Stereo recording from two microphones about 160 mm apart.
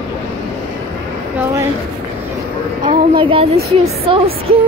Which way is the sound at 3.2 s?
35° right (ahead or behind).